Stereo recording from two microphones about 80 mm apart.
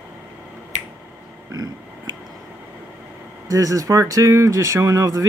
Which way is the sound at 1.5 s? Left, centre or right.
Right.